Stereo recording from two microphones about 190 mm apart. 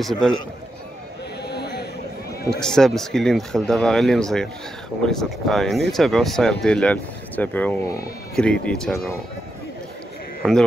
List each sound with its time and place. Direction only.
0.0 s speech: centre (ahead or behind)
1.5 s a sound: 60° left (ahead or behind)
2.6 s speech: 5° left (ahead or behind)
8.4 s speech: 5° left (ahead or behind)